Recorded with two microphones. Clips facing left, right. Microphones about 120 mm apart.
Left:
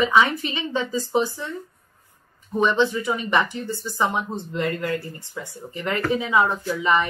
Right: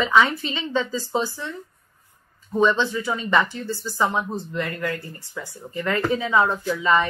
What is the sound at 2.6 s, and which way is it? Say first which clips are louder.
A woman's voice: even; 20° left (ahead or behind).